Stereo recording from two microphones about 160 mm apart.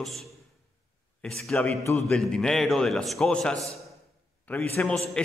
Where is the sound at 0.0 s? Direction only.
Centre (ahead or behind).